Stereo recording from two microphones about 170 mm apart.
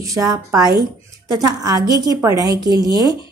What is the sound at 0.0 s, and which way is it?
A woman's voice, 20° right (ahead or behind).